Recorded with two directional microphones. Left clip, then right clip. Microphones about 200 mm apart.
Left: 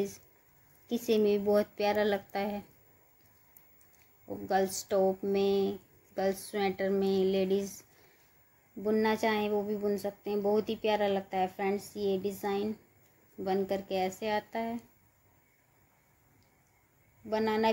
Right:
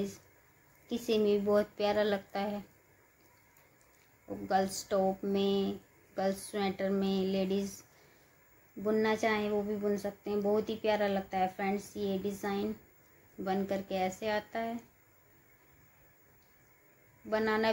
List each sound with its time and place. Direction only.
0.8 s speech: 25° left (ahead or behind)
4.5 s speech: 25° left (ahead or behind)
8.8 s speech: 25° left (ahead or behind)
17.3 s speech: 20° left (ahead or behind)